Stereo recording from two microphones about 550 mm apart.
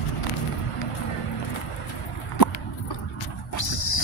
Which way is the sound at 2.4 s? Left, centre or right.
Left.